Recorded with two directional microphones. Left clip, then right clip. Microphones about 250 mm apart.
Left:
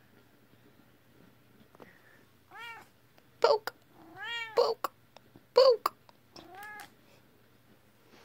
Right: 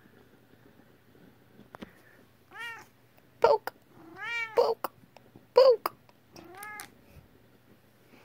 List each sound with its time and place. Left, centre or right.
3.3 s hiccup: centre
4.1 s cat: centre
4.6 s a sound: centre